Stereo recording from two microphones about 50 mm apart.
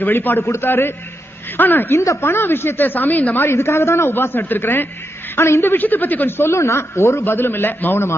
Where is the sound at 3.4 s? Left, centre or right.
Left.